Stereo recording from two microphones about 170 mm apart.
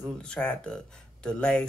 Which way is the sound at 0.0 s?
5° left (ahead or behind).